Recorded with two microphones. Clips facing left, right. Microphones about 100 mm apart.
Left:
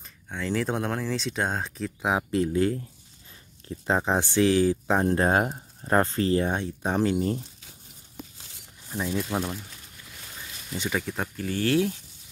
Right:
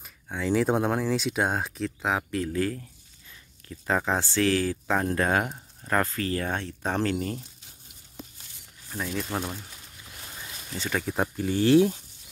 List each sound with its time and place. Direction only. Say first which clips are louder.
0.3 s speech: right 4 dB; 10° right (ahead or behind)
2.0 s speech: left 2 dB; 15° left (ahead or behind)
2.3 s speech: left 4 dB; 25° left (ahead or behind)
8.8 s speech: left 3 dB; 15° left (ahead or behind)
9.4 s speech: left 3 dB; 5° right (ahead or behind)
11.1 s speech: right 3 dB; 15° right (ahead or behind)